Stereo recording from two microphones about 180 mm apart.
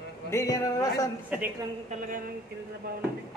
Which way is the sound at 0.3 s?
15° left (ahead or behind).